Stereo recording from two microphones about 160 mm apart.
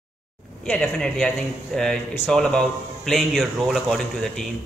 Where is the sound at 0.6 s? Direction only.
5° left (ahead or behind).